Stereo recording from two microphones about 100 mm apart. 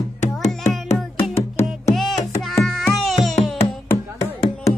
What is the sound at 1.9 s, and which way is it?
Child singing, centre (ahead or behind).